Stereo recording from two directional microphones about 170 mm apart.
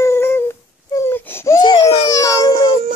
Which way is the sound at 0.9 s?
15° left (ahead or behind).